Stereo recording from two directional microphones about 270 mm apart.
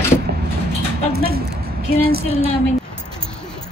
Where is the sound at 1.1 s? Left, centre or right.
Right.